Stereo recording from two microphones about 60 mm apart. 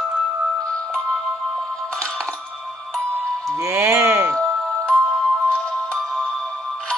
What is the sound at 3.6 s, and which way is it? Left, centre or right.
Music, right.